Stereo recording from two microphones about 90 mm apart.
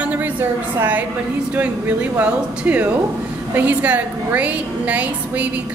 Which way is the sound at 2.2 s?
15° right (ahead or behind).